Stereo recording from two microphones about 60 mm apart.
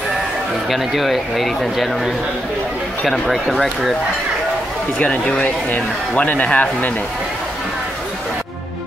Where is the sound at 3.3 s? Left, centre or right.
Centre.